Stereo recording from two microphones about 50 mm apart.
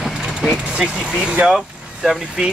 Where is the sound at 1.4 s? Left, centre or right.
Centre.